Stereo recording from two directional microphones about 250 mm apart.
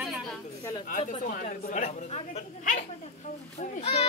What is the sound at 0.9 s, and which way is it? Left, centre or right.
Speech, left.